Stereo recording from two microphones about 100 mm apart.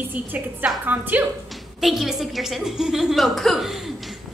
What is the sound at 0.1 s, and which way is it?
A woman's voice, 20° right (ahead or behind).